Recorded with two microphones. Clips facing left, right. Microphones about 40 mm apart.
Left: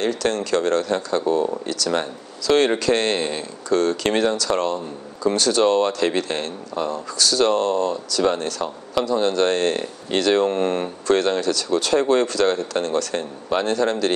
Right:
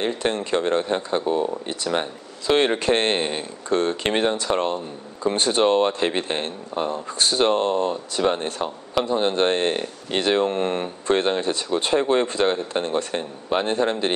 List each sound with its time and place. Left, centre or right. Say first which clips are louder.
0.0 s speech: left 2 dB; right